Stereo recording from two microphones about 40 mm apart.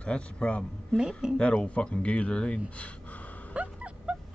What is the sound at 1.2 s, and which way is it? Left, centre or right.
Speech, centre.